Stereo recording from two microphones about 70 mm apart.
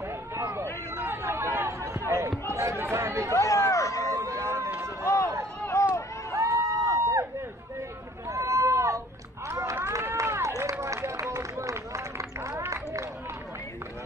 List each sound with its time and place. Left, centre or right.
1.0 s a sound: right
2.4 s chatter: right
3.3 s run: left
4.1 s a sound: right
5.0 s run: left
5.6 s a sound: left
6.3 s crowd: right
8.3 s run: right
9.8 s run: right